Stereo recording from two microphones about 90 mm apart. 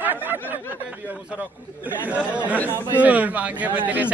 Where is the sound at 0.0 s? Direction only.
20° right (ahead or behind).